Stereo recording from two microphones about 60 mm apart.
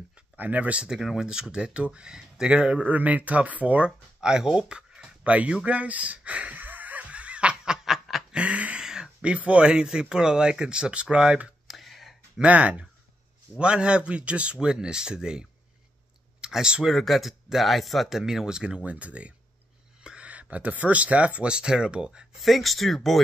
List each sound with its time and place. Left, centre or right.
0.4 s speech: right
0.8 s speech: centre
8.3 s a sound: centre
9.5 s speech: centre
11.6 s a sound: centre
12.4 s speech: right
16.9 s speech: centre
18.9 s speech: right
22.4 s speech: centre